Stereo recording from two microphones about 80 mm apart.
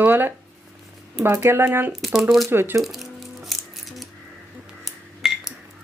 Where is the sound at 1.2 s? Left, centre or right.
Right.